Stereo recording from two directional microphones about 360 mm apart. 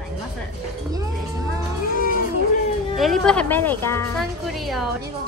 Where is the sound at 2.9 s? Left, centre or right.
Centre.